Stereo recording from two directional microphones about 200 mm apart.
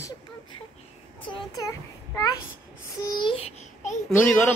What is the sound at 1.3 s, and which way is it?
A child's voice, 15° left (ahead or behind).